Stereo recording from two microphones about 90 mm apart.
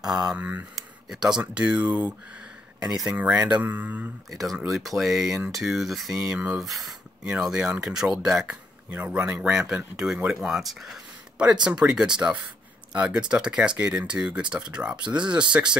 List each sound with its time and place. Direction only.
0.0 s speech: 5° right (ahead or behind)
0.7 s a sound: 5° right (ahead or behind)
1.4 s speech: 15° right (ahead or behind)
4.3 s speech: centre (ahead or behind)